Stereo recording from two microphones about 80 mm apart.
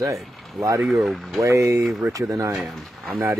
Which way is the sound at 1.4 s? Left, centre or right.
Right.